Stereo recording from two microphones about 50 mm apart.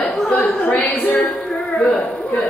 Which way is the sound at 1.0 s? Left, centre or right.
Left.